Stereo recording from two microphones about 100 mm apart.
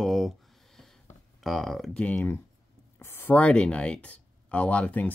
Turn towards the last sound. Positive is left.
turn(degrees=15)  # may be behind; listen again after turning